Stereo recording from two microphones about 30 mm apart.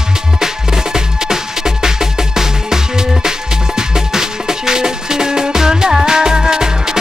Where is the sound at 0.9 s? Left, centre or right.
Centre.